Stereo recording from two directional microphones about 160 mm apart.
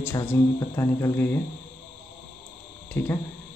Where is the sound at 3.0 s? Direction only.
15° left (ahead or behind).